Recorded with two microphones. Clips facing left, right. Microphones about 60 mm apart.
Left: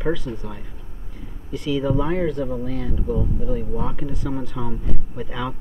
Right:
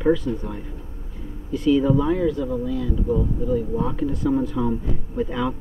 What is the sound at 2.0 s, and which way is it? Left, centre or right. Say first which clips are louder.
Speech: right 1 dB; left.